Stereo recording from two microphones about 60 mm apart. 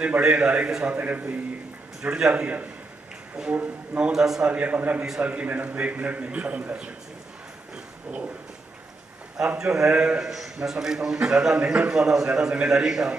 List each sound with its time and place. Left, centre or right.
0.2 s a man's voice: centre
0.9 s a man's voice: right
2.0 s a man's voice: centre
2.3 s a man's voice: right
4.0 s a man's voice: centre
4.5 s a man's voice: right
9.6 s a man's voice: centre